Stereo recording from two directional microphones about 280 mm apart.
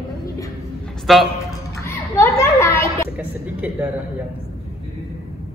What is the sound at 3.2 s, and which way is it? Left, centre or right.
Speech, centre.